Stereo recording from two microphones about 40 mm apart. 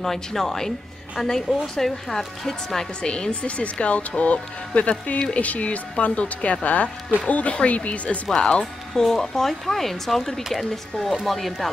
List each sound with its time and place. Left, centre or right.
0.0 s speech: centre
3.0 s speech: left
8.4 s speech: left; by 11.7 s centre